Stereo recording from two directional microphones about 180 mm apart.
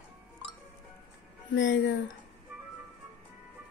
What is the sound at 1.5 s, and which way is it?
Speech, 90° left.